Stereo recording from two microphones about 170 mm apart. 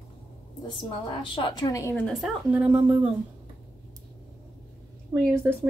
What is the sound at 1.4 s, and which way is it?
Speech, 25° left (ahead or behind).